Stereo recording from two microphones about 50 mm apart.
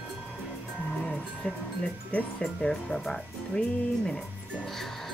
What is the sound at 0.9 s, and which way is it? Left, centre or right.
Music, centre.